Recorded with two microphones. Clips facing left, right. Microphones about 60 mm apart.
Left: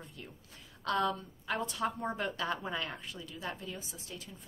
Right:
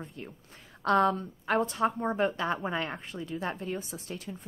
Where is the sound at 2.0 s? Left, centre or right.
Right.